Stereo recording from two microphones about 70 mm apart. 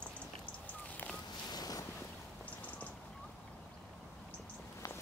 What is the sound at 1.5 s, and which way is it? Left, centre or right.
Boat, left.